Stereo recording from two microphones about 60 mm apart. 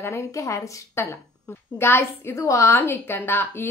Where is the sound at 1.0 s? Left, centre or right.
Left.